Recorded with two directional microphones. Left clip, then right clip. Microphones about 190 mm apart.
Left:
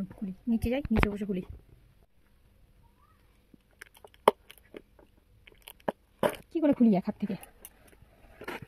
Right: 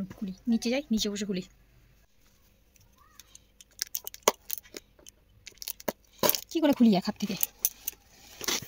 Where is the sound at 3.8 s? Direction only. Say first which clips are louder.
Left 3 dB; centre (ahead or behind).